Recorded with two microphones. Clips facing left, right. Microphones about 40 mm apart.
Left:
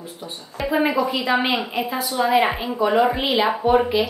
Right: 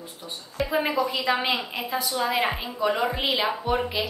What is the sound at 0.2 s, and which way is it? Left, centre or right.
Speech, centre.